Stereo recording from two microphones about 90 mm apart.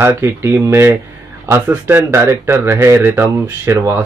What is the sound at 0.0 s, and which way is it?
A man's voice, 30° right (ahead or behind).